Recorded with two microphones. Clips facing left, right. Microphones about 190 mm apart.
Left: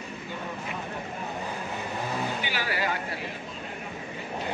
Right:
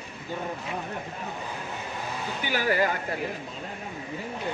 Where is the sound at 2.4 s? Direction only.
45° right (ahead or behind).